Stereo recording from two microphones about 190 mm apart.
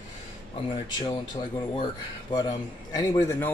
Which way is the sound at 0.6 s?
25° left (ahead or behind).